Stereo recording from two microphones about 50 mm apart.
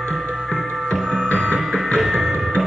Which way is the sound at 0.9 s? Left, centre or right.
Centre.